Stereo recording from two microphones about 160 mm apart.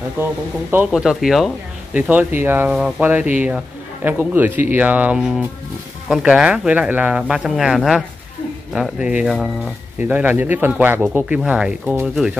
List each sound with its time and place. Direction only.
0.2 s speech: 10° right (ahead or behind)